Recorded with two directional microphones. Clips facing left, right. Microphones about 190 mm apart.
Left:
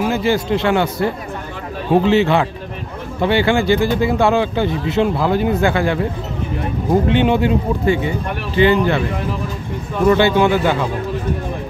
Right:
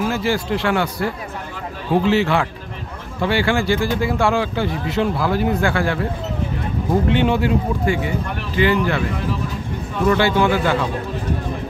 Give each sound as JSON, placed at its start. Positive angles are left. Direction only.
{"t": 0.0, "sound": "speech", "side_deg": 20}
{"t": 7.1, "sound": "speech", "side_deg": 20}
{"t": 10.0, "sound": "speech", "side_deg": 20}